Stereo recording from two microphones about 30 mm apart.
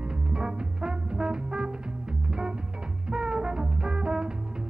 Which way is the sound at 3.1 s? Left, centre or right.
Right.